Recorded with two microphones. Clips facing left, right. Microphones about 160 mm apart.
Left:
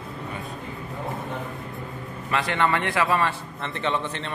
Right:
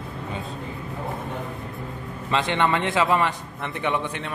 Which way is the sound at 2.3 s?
20° right (ahead or behind).